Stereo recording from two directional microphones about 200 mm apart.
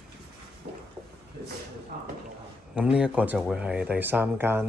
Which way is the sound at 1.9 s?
50° right (ahead or behind).